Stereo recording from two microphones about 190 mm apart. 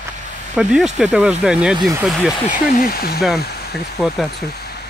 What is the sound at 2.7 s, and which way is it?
Speech, 50° left (ahead or behind).